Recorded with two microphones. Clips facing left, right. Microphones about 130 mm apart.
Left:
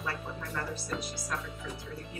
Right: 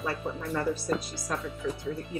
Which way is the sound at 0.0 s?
35° right (ahead or behind).